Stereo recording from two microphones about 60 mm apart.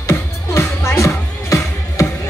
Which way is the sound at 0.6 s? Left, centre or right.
Left.